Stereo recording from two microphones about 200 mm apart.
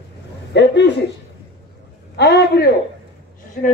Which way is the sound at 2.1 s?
55° left (ahead or behind).